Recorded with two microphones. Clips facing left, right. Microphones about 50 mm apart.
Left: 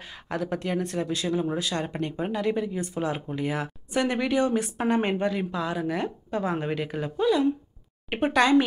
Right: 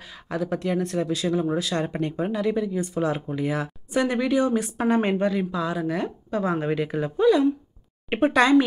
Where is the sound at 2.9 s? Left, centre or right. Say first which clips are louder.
Right 4 dB; centre.